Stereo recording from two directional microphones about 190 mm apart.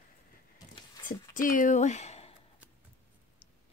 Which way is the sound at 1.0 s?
45° left (ahead or behind).